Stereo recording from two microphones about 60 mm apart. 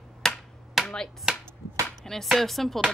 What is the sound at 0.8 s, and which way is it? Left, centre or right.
Chopping, centre.